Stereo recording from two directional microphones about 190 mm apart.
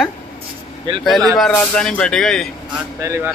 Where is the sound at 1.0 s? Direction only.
Centre (ahead or behind).